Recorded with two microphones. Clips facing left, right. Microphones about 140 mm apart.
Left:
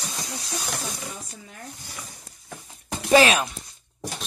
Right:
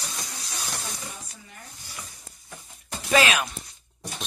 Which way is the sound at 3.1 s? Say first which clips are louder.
Left 5 dB; 30° left (ahead or behind).